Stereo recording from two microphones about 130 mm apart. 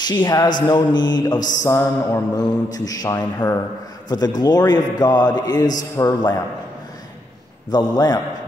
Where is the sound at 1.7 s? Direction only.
20° left (ahead or behind).